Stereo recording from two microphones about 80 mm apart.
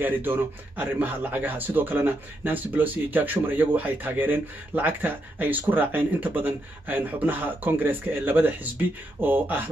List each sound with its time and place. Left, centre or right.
0.0 s a man's voice: right